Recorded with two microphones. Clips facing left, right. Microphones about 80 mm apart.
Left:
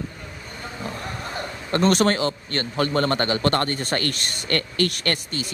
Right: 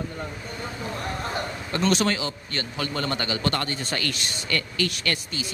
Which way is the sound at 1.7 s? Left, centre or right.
Left.